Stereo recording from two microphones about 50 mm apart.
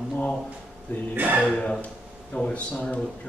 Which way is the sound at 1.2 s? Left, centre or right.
Right.